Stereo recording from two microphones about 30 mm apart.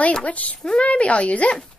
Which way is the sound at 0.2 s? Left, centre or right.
Left.